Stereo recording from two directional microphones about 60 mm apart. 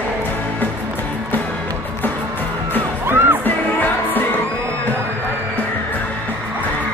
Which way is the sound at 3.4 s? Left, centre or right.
Left.